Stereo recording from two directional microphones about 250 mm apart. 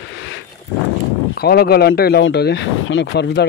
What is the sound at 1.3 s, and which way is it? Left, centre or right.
Speech, left.